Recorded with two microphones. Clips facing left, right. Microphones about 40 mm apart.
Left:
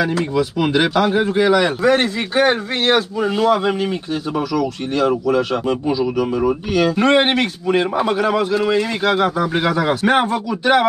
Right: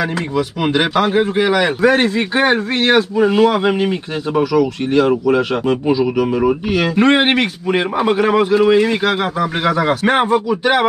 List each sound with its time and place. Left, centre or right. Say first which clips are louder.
0.0 s speech: left 1 dB; centre